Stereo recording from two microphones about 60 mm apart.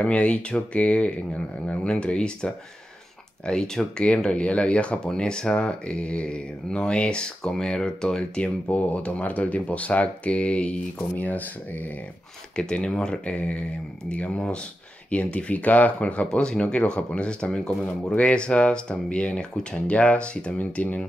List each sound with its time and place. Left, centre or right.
0.0 s speech: centre
12.5 s speech: centre